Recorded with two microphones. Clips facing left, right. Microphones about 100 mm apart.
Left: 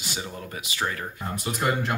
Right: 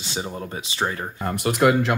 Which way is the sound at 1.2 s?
65° right (ahead or behind).